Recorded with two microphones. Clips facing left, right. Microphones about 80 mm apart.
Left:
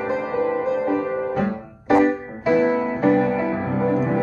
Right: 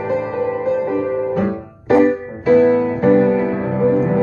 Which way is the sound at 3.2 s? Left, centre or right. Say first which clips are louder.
Right 6 dB; centre.